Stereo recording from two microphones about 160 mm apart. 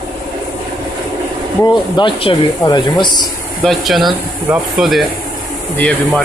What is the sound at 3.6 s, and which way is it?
Speech, centre (ahead or behind).